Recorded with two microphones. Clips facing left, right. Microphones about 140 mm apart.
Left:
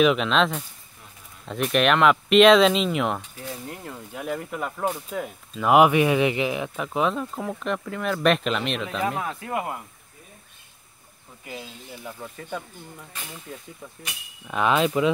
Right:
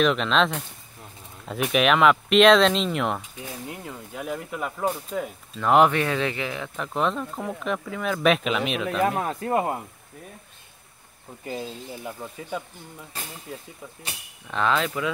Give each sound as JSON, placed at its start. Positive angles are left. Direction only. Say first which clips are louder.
{"t": 0.0, "sound": "speech", "louder": "left 1 dB", "side_deg": 5}
{"t": 1.7, "sound": "speech", "louder": "even", "side_deg": 0}
{"t": 6.8, "sound": "speech", "louder": "even", "side_deg": 5}
{"t": 9.0, "sound": "speech", "louder": "right 5 dB", "side_deg": -40}
{"t": 12.0, "sound": "speech", "louder": "right 2 dB", "side_deg": -10}
{"t": 14.5, "sound": "speech", "louder": "left 3 dB", "side_deg": 15}